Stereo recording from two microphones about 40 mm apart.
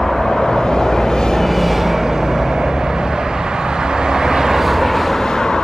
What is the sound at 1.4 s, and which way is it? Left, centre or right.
Vehicle, centre.